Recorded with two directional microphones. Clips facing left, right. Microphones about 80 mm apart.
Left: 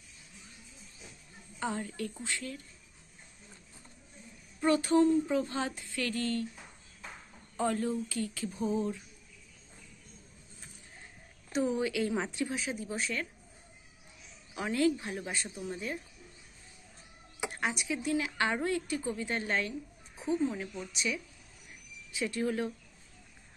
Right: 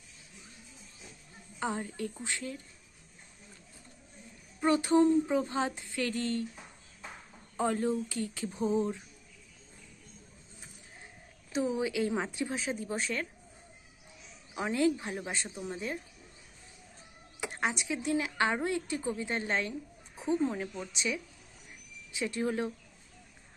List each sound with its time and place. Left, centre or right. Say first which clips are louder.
1.6 s speech: right 1 dB; right
4.6 s speech: right 1 dB; right
7.5 s speech: right 1 dB; right
11.5 s a woman's voice: left 1 dB; centre
11.8 s speech: even; right
12.5 s speech: right 1 dB; right
14.5 s speech: even; right
17.5 s speech: right 1 dB; right
20.2 s a woman's voice: right 1 dB; right